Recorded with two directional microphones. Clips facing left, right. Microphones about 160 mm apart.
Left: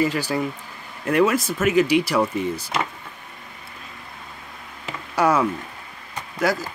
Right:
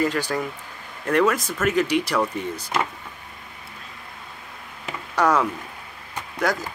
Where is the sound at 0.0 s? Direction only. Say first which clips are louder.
Left 1 dB; 10° left (ahead or behind).